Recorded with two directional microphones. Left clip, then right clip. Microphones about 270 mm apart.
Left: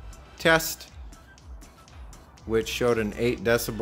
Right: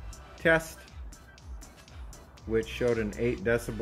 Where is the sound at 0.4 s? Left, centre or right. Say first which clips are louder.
Left 4 dB; centre.